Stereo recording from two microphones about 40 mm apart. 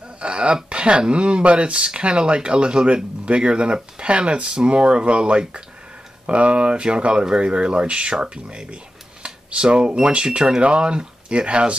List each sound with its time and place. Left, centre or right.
0.2 s speech: right